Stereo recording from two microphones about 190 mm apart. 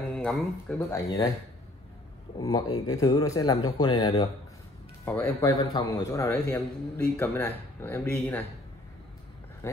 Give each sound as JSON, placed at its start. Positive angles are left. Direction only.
{"t": 0.1, "sound": "speech", "side_deg": 5}
{"t": 0.8, "sound": "a man's voice", "side_deg": 15}
{"t": 2.3, "sound": "a man's voice", "side_deg": 20}
{"t": 5.0, "sound": "a man's voice", "side_deg": 10}